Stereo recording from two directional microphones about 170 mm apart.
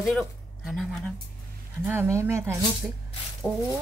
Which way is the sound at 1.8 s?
15° right (ahead or behind).